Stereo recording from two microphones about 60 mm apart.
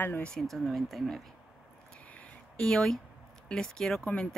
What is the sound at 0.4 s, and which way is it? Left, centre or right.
Speech, centre.